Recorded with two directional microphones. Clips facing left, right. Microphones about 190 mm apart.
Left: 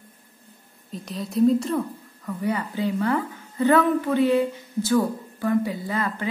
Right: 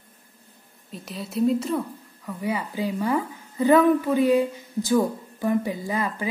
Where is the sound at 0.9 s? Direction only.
5° right (ahead or behind).